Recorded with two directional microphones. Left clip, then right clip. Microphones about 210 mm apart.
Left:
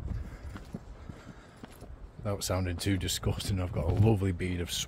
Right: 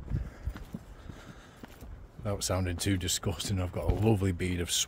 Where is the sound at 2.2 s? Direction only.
15° right (ahead or behind).